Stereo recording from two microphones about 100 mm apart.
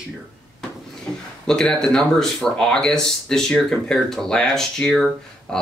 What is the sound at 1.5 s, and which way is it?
Speech, 5° left (ahead or behind).